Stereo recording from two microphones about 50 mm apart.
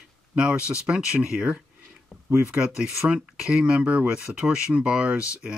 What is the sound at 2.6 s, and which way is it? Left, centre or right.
Speech, centre.